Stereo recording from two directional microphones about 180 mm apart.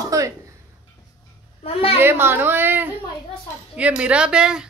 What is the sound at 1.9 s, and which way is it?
A woman's voice, 10° right (ahead or behind).